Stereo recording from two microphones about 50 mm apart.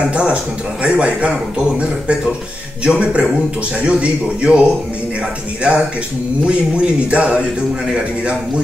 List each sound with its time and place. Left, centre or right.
0.1 s a man's voice: right
2.8 s a man's voice: right